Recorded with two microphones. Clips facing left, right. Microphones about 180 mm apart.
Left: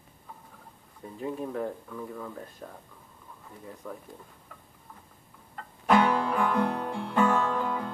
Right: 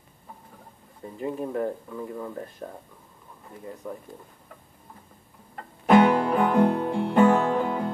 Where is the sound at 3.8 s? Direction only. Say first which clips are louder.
Right 4 dB; 15° right (ahead or behind).